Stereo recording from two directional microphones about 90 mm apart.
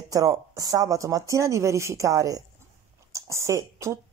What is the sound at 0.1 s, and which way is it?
A woman's voice, 40° right (ahead or behind).